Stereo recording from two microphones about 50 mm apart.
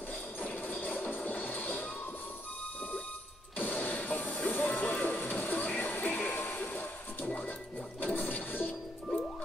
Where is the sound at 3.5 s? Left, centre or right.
Left.